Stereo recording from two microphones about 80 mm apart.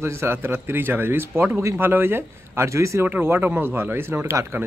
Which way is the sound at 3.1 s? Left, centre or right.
Right.